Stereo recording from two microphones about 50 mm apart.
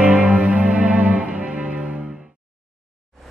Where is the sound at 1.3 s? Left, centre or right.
Right.